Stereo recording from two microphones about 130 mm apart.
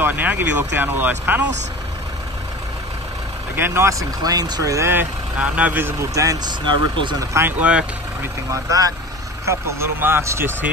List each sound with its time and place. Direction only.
0.0 s speech: 15° right (ahead or behind)
3.5 s speech: 20° right (ahead or behind); by 7.2 s 35° right (ahead or behind)
7.3 s speech: 15° right (ahead or behind)
8.5 s speech: 25° right (ahead or behind)